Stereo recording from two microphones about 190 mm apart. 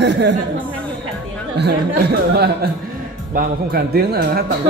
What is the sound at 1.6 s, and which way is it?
Speech, 60° right (ahead or behind).